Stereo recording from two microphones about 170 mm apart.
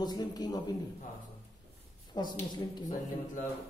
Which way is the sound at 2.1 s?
25° left (ahead or behind).